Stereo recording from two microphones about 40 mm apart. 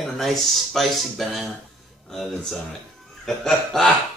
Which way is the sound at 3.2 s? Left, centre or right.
Centre.